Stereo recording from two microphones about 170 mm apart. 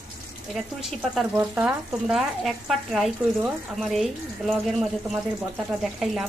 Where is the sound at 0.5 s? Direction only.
Centre (ahead or behind).